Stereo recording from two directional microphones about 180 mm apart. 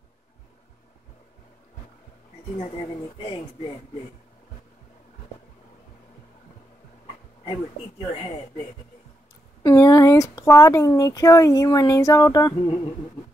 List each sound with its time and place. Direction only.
3.2 s speech: 30° left (ahead or behind)
9.6 s speech: 20° left (ahead or behind)